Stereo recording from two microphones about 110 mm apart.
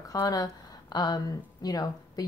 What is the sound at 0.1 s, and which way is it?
A woman's voice, 35° left (ahead or behind).